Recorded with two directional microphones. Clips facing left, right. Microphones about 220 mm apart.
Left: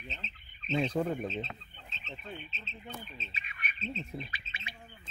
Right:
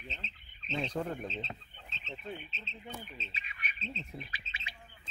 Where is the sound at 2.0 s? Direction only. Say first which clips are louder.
Right 2 dB; 10° left (ahead or behind).